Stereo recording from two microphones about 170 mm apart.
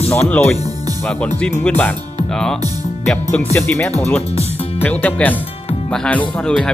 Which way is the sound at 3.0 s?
5° left (ahead or behind).